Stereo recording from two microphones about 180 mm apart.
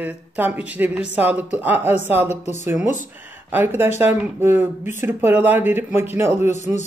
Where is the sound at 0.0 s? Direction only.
10° right (ahead or behind).